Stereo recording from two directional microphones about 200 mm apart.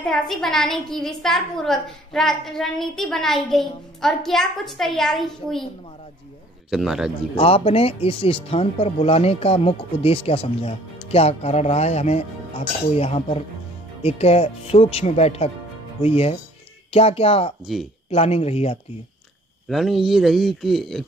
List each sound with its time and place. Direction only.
0.0 s a woman's voice: centre (ahead or behind)
6.7 s a woman's voice: centre (ahead or behind)
7.3 s speech: 30° left (ahead or behind)
19.7 s a woman's voice: centre (ahead or behind)